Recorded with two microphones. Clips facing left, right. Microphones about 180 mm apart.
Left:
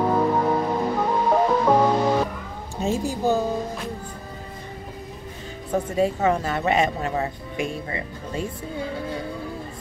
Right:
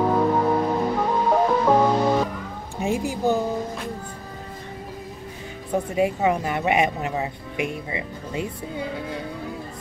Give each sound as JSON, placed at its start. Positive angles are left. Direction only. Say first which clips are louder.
{"t": 0.0, "sound": "music", "louder": "right 1 dB", "side_deg": 0}
{"t": 2.8, "sound": "a woman's voice", "louder": "even", "side_deg": -15}
{"t": 5.9, "sound": "speech", "louder": "even", "side_deg": -15}